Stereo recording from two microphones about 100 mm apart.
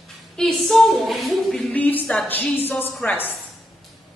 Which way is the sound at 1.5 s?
15° left (ahead or behind).